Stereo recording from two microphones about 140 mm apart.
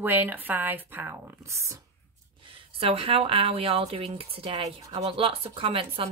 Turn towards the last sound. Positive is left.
turn(degrees=-40)  # may be behind; listen again after turning